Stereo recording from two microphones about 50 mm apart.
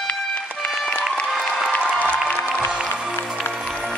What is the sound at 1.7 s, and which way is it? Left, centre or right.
Music, left.